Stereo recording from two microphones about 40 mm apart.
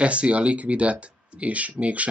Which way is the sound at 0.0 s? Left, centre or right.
Right.